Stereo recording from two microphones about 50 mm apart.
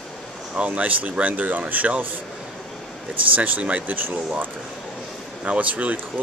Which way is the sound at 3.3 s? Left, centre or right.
Right.